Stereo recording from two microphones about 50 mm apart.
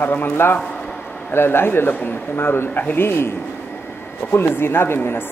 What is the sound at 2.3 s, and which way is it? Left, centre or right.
Speech, left.